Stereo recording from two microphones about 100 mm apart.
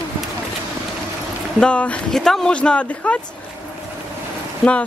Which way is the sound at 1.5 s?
10° left (ahead or behind).